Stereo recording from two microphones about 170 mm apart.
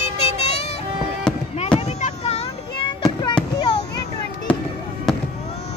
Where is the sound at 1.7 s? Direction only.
40° left (ahead or behind).